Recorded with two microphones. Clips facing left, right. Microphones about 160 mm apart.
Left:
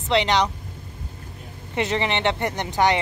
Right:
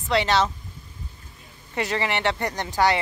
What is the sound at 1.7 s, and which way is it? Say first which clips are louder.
Speech: left 2 dB; 20° left (ahead or behind).